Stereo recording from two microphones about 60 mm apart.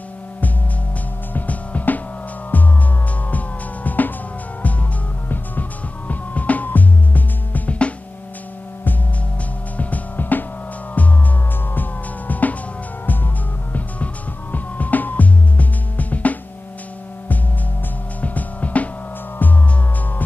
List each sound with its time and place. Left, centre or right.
1.3 s music: left
5.3 s music: left
9.8 s music: left
14.5 s music: left
18.2 s music: left